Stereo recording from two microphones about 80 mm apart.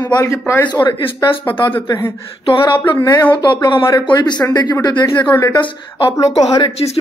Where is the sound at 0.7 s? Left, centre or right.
Left.